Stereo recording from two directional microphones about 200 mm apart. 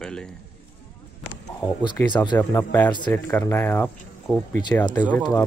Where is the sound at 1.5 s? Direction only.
15° left (ahead or behind).